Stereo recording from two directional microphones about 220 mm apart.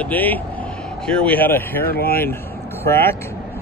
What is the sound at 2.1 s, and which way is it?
Vehicle, 10° left (ahead or behind).